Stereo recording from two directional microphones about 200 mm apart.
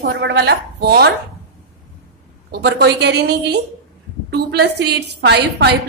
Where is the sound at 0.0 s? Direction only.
60° right (ahead or behind).